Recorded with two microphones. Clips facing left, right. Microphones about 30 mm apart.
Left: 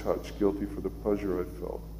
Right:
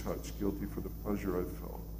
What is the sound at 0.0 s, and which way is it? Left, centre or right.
A man's voice, left.